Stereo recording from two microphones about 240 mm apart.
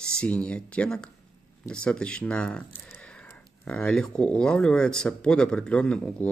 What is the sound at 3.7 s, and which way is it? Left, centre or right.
Speech, centre.